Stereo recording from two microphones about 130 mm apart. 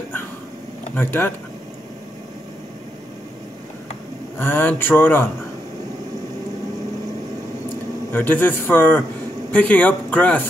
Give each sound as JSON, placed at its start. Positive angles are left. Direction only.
{"t": 0.9, "sound": "speech", "side_deg": 15}
{"t": 4.4, "sound": "speech", "side_deg": 15}
{"t": 8.1, "sound": "speech", "side_deg": 15}